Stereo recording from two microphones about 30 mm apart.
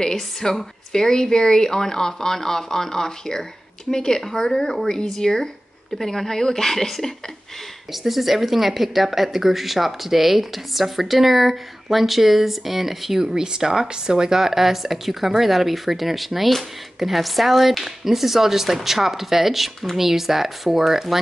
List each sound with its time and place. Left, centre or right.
0.0 s a woman's voice: centre
4.2 s a woman's voice: centre
7.9 s speech: centre
13.2 s speech: right